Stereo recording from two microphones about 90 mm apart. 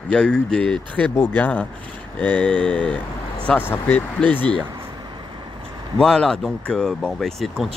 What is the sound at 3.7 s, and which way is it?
Speech, 20° left (ahead or behind).